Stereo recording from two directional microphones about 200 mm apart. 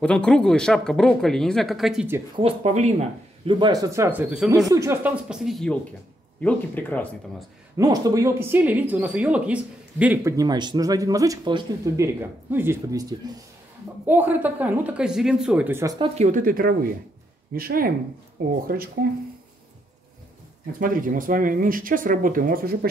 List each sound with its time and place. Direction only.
0.0 s speech: 5° left (ahead or behind)
2.3 s speech: 30° right (ahead or behind); by 4.5 s 5° right (ahead or behind)
4.5 s speech: 15° right (ahead or behind); by 7.4 s 10° left (ahead or behind)
7.7 s speech: 20° right (ahead or behind)
16.0 s speech: 40° right (ahead or behind)
20.8 s speech: 40° right (ahead or behind)